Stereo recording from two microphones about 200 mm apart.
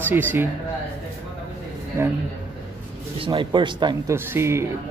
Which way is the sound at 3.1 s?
25° right (ahead or behind).